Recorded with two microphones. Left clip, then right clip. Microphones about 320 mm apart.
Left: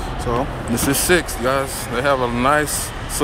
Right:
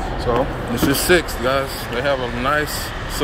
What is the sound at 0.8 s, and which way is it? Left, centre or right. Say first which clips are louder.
Speech: right 1 dB; centre.